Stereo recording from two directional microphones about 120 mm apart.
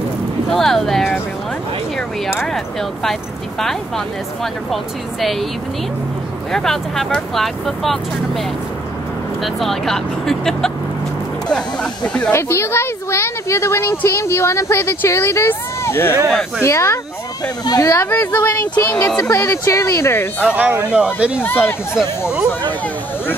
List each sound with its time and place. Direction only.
0.5 s speech: 5° left (ahead or behind)
2.4 s speech: 5° left (ahead or behind)
6.5 s speech: 5° left (ahead or behind)
9.4 s speech: centre (ahead or behind)
11.4 s a sound: 5° left (ahead or behind)
12.3 s a woman's voice: 20° left (ahead or behind)
16.3 s speech: 5° right (ahead or behind)
16.6 s a woman's voice: 25° left (ahead or behind)
18.1 s speech: 15° left (ahead or behind)
19.2 s a woman's voice: 25° left (ahead or behind)
20.4 s speech: 10° right (ahead or behind)